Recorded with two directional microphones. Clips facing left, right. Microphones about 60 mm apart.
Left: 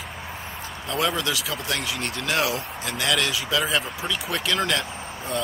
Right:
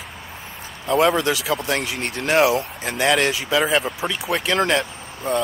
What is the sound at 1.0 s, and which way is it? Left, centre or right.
Speech, right.